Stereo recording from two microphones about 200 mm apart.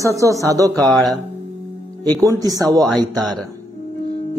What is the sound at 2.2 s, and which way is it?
Speech, 15° right (ahead or behind).